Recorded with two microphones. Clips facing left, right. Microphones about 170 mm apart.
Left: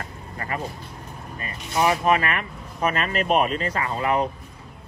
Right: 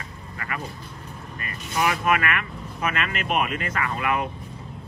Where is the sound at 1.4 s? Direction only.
30° left (ahead or behind).